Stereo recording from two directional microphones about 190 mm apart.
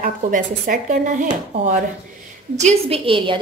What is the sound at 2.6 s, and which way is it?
Speech, 35° right (ahead or behind).